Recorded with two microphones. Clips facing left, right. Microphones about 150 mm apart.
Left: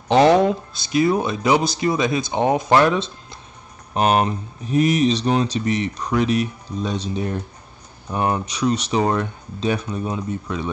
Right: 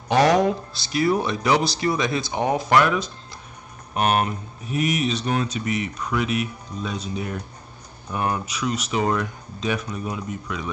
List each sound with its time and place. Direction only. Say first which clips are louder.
0.1 s speech: left 4 dB; 25° left (ahead or behind)